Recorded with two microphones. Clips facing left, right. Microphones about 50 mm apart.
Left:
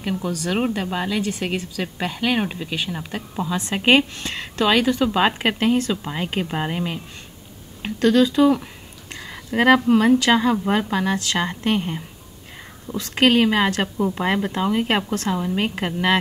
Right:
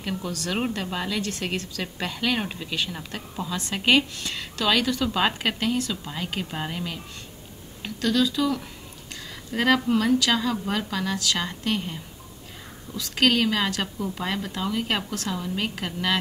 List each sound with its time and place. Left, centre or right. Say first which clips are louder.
0.0 s speech: left 5 dB; centre